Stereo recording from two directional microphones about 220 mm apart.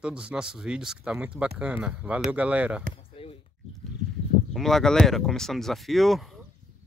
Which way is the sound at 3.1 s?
25° left (ahead or behind).